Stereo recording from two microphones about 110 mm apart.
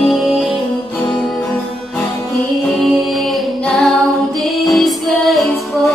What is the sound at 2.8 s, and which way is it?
Music, centre (ahead or behind).